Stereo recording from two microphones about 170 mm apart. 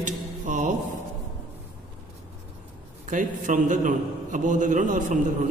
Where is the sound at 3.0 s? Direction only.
50° right (ahead or behind).